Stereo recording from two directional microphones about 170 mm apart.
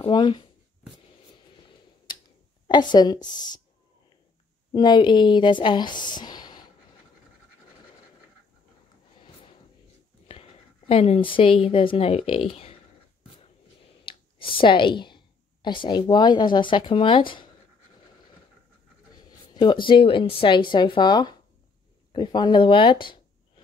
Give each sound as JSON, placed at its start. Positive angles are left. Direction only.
{"t": 0.0, "sound": "speech", "side_deg": 25}
{"t": 2.1, "sound": "a sound", "side_deg": 25}
{"t": 2.7, "sound": "a woman's voice", "side_deg": 25}
{"t": 4.7, "sound": "a woman's voice", "side_deg": 25}
{"t": 10.2, "sound": "speech", "side_deg": 35}
{"t": 14.1, "sound": "clicking", "side_deg": 30}
{"t": 14.6, "sound": "a woman's voice", "side_deg": 30}
{"t": 19.5, "sound": "a woman's voice", "side_deg": 25}